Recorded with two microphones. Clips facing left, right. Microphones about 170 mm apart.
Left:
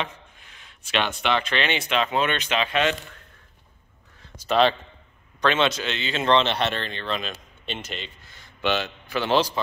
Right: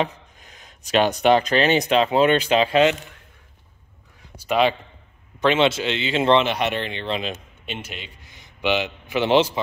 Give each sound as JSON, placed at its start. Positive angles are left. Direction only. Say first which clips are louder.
{"t": 0.0, "sound": "speech", "louder": "right 7 dB", "side_deg": -40}
{"t": 4.2, "sound": "a sound", "louder": "even", "side_deg": -10}
{"t": 5.4, "sound": "a man's voice", "louder": "right 4 dB", "side_deg": -20}
{"t": 7.6, "sound": "a man's voice", "louder": "left 1 dB", "side_deg": -10}